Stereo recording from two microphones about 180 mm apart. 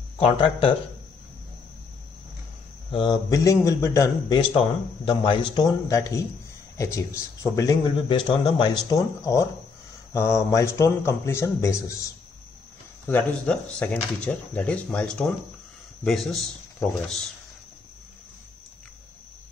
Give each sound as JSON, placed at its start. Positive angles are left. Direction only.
{"t": 0.2, "sound": "a man's voice", "side_deg": 30}
{"t": 2.9, "sound": "a man's voice", "side_deg": 25}
{"t": 7.8, "sound": "a man's voice", "side_deg": 25}